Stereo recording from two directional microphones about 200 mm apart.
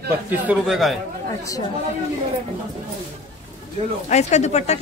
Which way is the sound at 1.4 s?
15° left (ahead or behind).